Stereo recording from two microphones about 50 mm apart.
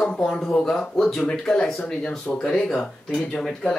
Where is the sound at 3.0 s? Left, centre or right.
Centre.